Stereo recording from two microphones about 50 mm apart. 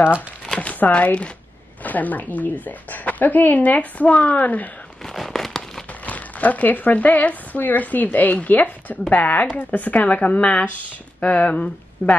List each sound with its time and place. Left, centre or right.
0.6 s speech: left
5.1 s fireworks: centre
6.0 s speech: left